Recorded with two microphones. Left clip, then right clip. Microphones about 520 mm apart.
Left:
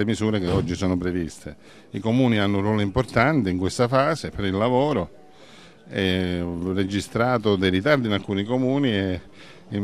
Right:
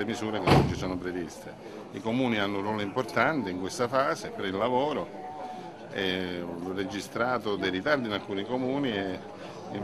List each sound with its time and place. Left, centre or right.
0.0 s speech: left